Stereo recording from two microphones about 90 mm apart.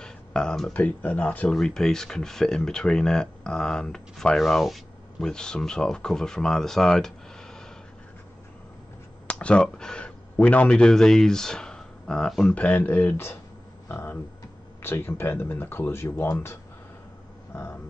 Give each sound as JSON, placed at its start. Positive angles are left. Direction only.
{"t": 0.0, "sound": "a sound", "side_deg": 10}
{"t": 0.7, "sound": "speech", "side_deg": 15}
{"t": 9.3, "sound": "speech", "side_deg": 10}
{"t": 12.5, "sound": "speech", "side_deg": 15}
{"t": 13.8, "sound": "a sound", "side_deg": 25}
{"t": 14.8, "sound": "speech", "side_deg": 25}